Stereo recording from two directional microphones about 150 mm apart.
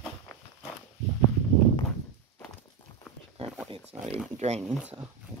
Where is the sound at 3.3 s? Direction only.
40° right (ahead or behind).